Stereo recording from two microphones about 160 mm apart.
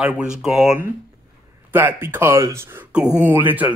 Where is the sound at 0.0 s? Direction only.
5° right (ahead or behind).